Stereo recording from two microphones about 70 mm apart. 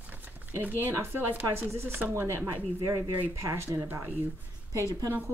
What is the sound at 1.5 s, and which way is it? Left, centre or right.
Speech, right.